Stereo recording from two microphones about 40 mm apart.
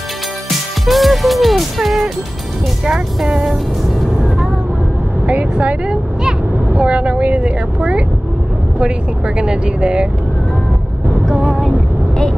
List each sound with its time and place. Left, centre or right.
0.8 s music: centre
5.2 s speech: right
9.4 s speech: right